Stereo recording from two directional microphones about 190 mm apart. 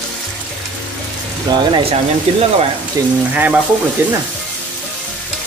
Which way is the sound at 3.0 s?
20° right (ahead or behind).